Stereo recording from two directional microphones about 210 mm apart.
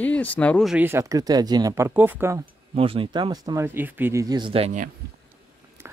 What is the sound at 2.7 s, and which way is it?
Speech, 25° right (ahead or behind).